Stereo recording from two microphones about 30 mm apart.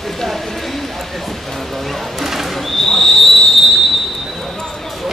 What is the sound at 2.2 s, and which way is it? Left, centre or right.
Bird, centre.